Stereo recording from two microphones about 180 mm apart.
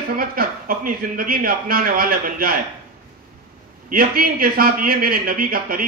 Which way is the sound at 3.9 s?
55° right (ahead or behind).